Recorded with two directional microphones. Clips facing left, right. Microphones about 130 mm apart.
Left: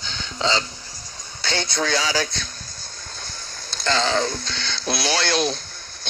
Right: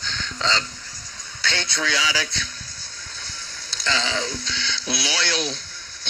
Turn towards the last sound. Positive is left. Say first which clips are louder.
# left 5 dB
turn(degrees=45)  # may be behind; listen again after turning